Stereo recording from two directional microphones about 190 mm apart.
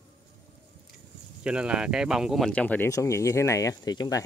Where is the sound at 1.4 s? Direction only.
5° right (ahead or behind).